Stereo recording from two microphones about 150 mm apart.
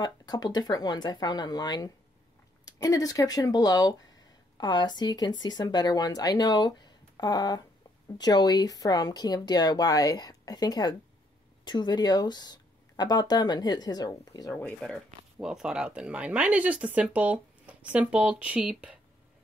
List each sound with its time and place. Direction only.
0.0 s speech: 25° left (ahead or behind)
14.5 s speech: 10° left (ahead or behind)
15.3 s speech: 5° right (ahead or behind)